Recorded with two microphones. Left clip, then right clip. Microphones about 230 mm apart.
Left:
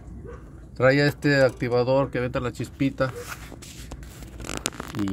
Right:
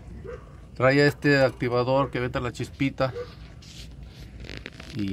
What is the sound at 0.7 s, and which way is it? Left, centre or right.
A man's voice, centre.